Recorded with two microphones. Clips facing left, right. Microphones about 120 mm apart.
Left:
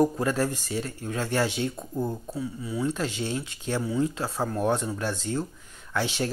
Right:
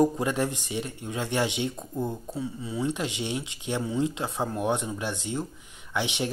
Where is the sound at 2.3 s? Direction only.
25° right (ahead or behind).